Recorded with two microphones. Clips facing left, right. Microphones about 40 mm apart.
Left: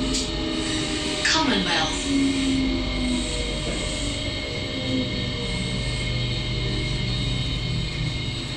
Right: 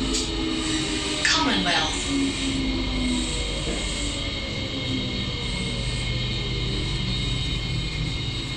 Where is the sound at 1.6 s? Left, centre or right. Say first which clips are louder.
Even; centre.